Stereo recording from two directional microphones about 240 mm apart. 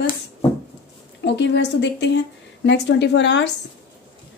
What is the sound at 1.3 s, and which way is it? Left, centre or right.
A woman's voice, left.